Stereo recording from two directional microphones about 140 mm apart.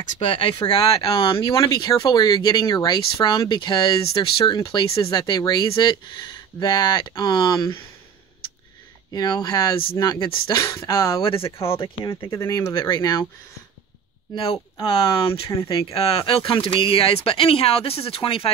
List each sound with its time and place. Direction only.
0.3 s speech: 40° left (ahead or behind)
9.1 s speech: 30° left (ahead or behind)
11.2 s speech: 40° left (ahead or behind)
12.3 s speech: 25° left (ahead or behind)
14.3 s speech: 40° left (ahead or behind)